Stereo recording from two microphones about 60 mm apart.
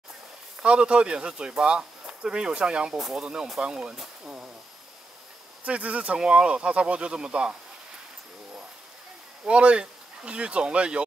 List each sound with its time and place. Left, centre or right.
0.6 s speech: centre
5.7 s speech: right
9.5 s speech: centre